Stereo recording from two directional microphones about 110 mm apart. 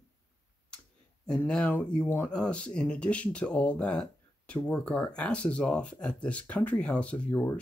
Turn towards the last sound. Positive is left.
turn(degrees=20)  # may be behind; listen again after turning